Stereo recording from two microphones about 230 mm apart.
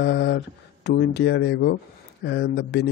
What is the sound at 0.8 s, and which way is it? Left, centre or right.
Speech, left.